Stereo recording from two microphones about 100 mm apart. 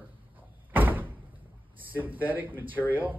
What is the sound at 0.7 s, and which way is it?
Door, 15° right (ahead or behind).